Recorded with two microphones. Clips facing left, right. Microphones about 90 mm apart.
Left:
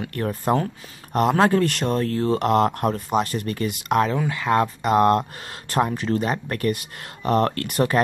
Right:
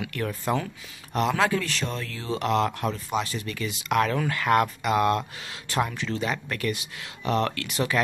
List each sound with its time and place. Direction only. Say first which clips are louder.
0.0 s speech: left 4 dB; 40° left (ahead or behind)
4.0 s speech: left 2 dB; 15° left (ahead or behind)
4.8 s speech: left 5 dB; 40° left (ahead or behind)